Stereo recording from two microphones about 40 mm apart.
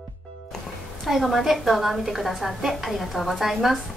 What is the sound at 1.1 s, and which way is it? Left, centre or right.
A woman's voice, centre.